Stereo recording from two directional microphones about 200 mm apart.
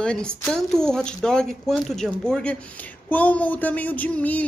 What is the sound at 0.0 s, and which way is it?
A woman's voice, 5° left (ahead or behind).